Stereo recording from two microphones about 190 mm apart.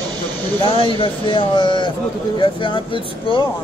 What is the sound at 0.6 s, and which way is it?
Speech, 30° left (ahead or behind).